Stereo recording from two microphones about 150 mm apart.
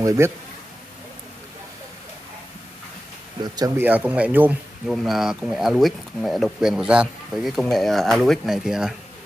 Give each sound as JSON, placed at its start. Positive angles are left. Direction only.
{"t": 0.0, "sound": "speech", "side_deg": -20}
{"t": 3.5, "sound": "speech", "side_deg": -25}
{"t": 3.8, "sound": "speech", "side_deg": -10}
{"t": 4.9, "sound": "speech", "side_deg": 0}